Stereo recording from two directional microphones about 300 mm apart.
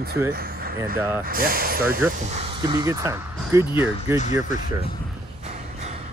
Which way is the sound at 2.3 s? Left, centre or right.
Centre.